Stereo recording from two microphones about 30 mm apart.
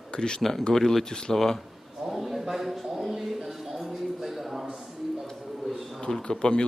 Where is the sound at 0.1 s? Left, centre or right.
Left.